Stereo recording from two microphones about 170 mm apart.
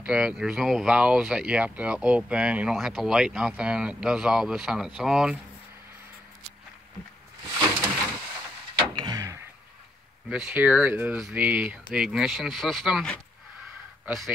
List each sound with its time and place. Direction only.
0.0 s speech: 5° right (ahead or behind)
8.9 s a sound: 25° right (ahead or behind)
10.3 s speech: 5° right (ahead or behind)